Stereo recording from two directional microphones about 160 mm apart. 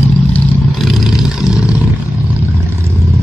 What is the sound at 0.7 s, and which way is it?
Vehicle, centre (ahead or behind).